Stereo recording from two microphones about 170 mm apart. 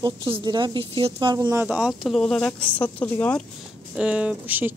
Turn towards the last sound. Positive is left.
turn(degrees=-10)  # may be behind; listen again after turning